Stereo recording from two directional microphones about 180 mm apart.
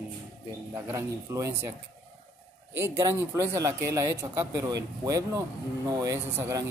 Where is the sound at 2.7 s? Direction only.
15° right (ahead or behind).